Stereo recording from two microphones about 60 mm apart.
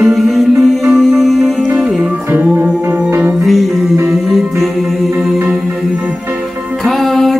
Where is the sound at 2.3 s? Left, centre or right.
Right.